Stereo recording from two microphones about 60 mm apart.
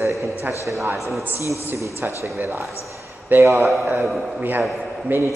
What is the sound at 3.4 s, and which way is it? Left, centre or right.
Speech, right.